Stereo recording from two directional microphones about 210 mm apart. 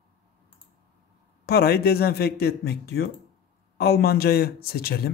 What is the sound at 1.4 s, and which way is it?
Speech, 50° left (ahead or behind).